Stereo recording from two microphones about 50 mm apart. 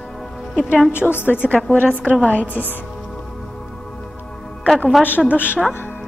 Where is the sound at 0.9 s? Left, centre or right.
Left.